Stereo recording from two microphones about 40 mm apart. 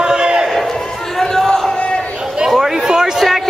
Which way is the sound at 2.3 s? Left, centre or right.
Centre.